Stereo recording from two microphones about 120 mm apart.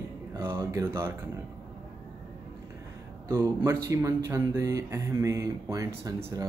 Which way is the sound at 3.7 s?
25° right (ahead or behind).